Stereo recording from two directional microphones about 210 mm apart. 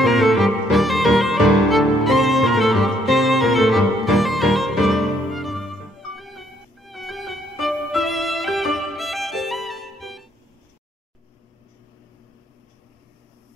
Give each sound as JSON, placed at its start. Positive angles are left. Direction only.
{"t": 0.0, "sound": "music", "side_deg": 0}